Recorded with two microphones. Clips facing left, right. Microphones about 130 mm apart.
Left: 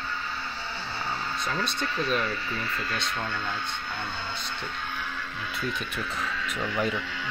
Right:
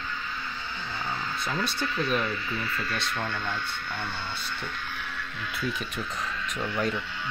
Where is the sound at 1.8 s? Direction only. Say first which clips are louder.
Even; 35° left (ahead or behind).